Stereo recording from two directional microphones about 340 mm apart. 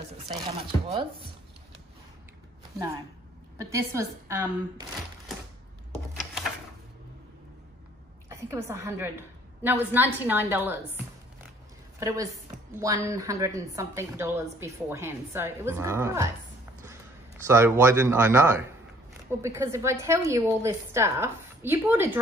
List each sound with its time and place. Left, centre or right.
0.3 s speech: centre
3.5 s speech: centre
8.3 s a woman's voice: centre
12.0 s speech: centre
17.5 s speech: centre